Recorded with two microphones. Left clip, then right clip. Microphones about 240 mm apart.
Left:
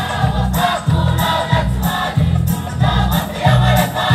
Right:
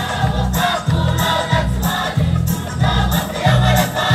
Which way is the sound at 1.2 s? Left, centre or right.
Left.